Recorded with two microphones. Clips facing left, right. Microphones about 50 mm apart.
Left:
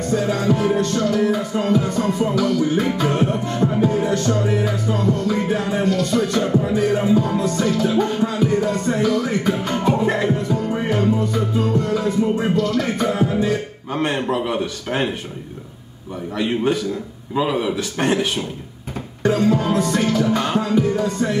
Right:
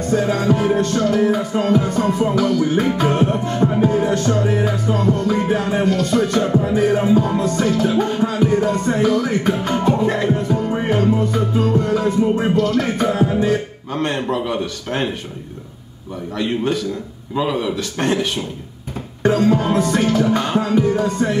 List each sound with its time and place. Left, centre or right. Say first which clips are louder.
0.1 s music: right 2 dB; right
4.9 s music: right 2 dB; right
5.2 s music: right 2 dB; right
7.3 s music: right 2 dB; right
9.8 s speech: even; centre
10.5 s music: right 2 dB; right
13.9 s speech: even; centre
16.3 s speech: even; centre
19.2 s music: right 2 dB; right